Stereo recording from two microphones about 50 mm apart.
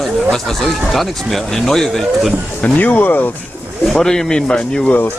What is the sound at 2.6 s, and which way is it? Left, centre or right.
Speech, left.